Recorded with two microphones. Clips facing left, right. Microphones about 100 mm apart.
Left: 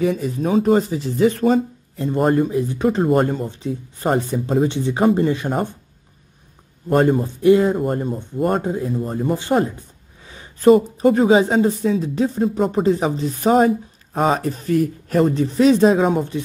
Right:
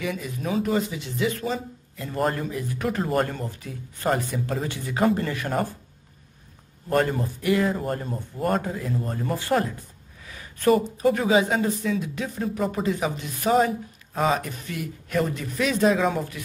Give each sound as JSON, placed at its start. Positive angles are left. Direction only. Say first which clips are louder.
{"t": 0.0, "sound": "speech", "louder": "left 9 dB", "side_deg": 35}
{"t": 2.2, "sound": "speech", "louder": "left 9 dB", "side_deg": 25}
{"t": 6.9, "sound": "speech", "louder": "left 7 dB", "side_deg": 30}
{"t": 10.2, "sound": "a sound", "louder": "left 8 dB", "side_deg": 25}
{"t": 11.0, "sound": "speech", "louder": "left 6 dB", "side_deg": 35}